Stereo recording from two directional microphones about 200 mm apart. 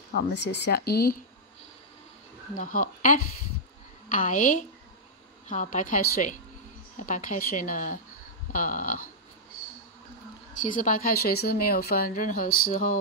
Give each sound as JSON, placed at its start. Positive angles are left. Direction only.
{"t": 0.1, "sound": "speech", "side_deg": 60}
{"t": 2.5, "sound": "a woman's voice", "side_deg": 40}
{"t": 10.6, "sound": "speech", "side_deg": 40}